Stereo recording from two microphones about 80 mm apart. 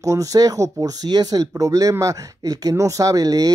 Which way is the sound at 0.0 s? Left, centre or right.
Right.